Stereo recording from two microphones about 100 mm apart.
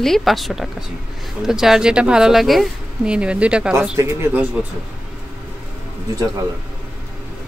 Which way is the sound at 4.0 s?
25° right (ahead or behind).